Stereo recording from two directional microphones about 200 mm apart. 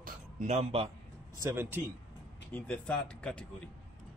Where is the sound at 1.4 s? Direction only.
15° right (ahead or behind).